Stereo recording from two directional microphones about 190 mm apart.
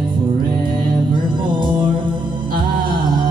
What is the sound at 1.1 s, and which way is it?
Music, 25° right (ahead or behind).